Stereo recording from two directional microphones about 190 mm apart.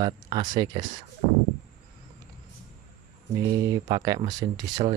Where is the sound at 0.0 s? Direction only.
20° right (ahead or behind).